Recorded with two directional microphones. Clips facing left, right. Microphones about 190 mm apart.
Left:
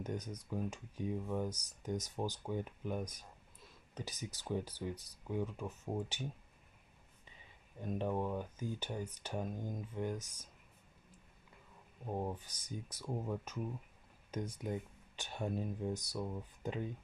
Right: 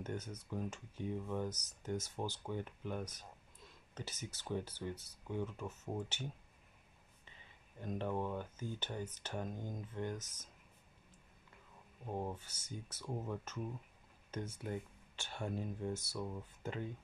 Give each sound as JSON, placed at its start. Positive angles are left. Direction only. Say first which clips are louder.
{"t": 0.0, "sound": "speech", "louder": "left 2 dB", "side_deg": 15}
{"t": 7.8, "sound": "speech", "louder": "left 2 dB", "side_deg": 10}
{"t": 12.1, "sound": "speech", "louder": "left 2 dB", "side_deg": 15}